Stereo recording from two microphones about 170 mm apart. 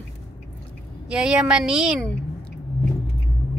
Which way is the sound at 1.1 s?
5° right (ahead or behind).